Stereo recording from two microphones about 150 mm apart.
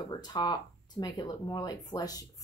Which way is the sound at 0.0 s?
30° left (ahead or behind).